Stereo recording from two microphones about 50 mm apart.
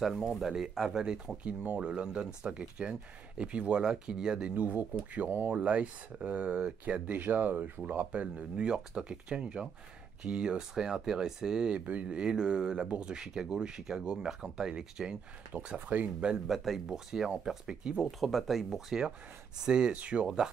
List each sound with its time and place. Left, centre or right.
0.0 s speech: centre
4.6 s speech: right
8.1 s speech: right
11.8 s speech: right
12.1 s speech: centre
15.7 s speech: right
16.4 s speech: centre
18.0 s speech: centre; by 20.2 s right